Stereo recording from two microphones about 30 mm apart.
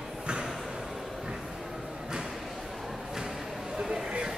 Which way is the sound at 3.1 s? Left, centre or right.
Centre.